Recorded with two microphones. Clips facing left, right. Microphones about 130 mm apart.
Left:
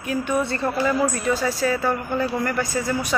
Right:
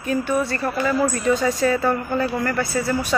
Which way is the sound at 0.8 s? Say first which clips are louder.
Right 3 dB; 5° left (ahead or behind).